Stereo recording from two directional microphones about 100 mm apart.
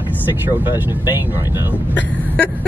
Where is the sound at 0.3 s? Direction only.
20° right (ahead or behind).